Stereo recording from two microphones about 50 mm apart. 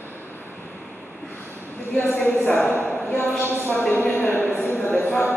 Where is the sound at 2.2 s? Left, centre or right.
Left.